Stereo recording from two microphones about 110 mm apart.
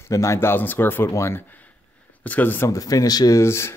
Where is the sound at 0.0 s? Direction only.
25° left (ahead or behind).